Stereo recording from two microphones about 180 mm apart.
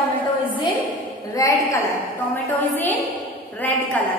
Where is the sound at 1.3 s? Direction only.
20° left (ahead or behind).